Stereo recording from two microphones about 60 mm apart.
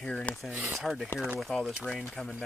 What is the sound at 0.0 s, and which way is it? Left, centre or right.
Speech, centre.